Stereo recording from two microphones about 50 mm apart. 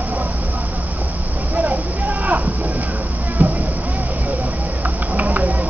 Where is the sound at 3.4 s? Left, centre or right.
Right.